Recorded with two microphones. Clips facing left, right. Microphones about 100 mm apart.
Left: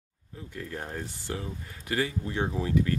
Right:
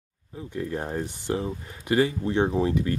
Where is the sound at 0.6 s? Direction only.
25° right (ahead or behind).